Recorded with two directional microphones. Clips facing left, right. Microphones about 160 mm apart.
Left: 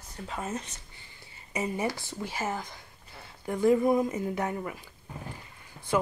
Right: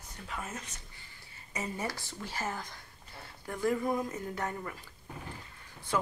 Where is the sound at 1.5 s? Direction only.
15° left (ahead or behind).